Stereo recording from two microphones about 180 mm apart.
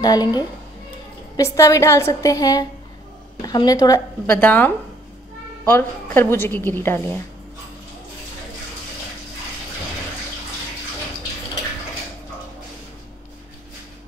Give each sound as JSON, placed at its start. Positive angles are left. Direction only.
{"t": 0.0, "sound": "a woman's voice", "side_deg": 20}